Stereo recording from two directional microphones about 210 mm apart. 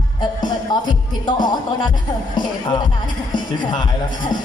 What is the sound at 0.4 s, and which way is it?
Music, 20° left (ahead or behind).